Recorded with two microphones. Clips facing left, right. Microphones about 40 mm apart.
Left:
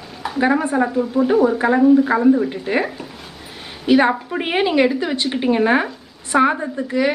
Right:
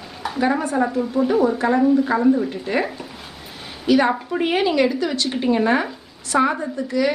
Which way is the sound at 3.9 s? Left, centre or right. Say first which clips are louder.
Left 2 dB; centre.